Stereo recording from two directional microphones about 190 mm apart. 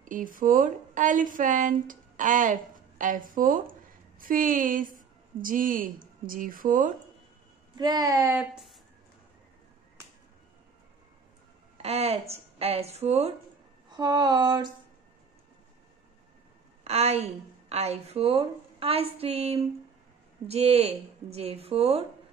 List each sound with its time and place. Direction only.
0.1 s a woman's voice: 45° right (ahead or behind)
7.7 s speech: 20° right (ahead or behind)
11.8 s a woman's voice: 35° right (ahead or behind)
13.8 s a sound: 20° right (ahead or behind)
16.8 s a woman's voice: 35° right (ahead or behind)